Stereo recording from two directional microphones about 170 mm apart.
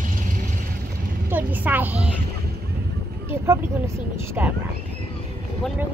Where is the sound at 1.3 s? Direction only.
10° right (ahead or behind).